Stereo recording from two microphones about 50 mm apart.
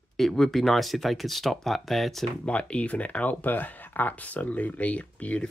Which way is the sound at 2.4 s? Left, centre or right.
Left.